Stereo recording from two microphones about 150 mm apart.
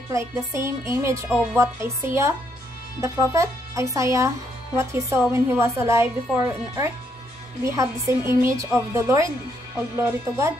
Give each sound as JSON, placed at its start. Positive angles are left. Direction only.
{"t": 0.6, "sound": "a woman's voice", "side_deg": -20}